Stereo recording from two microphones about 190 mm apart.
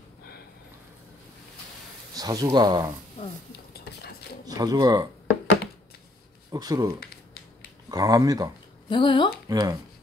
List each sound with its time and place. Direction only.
2.1 s speech: 20° right (ahead or behind)
3.7 s dishes: 60° left (ahead or behind)
4.5 s speech: 20° right (ahead or behind)
6.5 s speech: 20° right (ahead or behind)
7.9 s speech: 20° right (ahead or behind)
8.8 s speech: 25° left (ahead or behind)
9.5 s speech: 20° right (ahead or behind)